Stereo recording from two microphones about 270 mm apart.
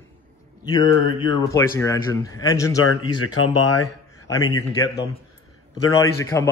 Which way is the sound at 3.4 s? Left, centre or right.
Centre.